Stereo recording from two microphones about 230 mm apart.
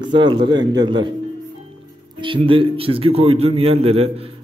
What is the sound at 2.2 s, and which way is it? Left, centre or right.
A man's voice, right.